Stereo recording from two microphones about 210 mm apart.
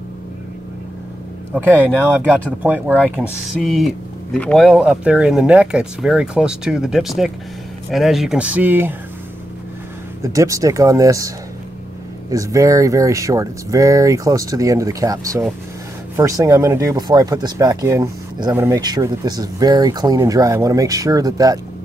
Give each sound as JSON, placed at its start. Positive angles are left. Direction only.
{"t": 2.6, "sound": "speech", "side_deg": -10}
{"t": 10.2, "sound": "speech", "side_deg": -15}